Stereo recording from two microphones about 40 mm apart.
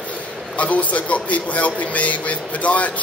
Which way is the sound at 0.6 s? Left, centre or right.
Left.